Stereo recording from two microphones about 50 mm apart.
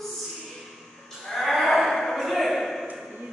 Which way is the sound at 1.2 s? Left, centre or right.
Centre.